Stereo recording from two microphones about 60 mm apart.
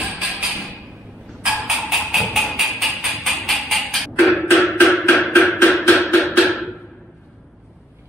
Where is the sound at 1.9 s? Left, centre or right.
Centre.